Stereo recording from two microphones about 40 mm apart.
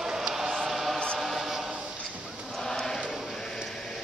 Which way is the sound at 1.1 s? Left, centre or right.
Centre.